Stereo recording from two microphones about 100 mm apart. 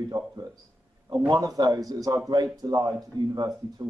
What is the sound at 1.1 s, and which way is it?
Speech, 40° right (ahead or behind).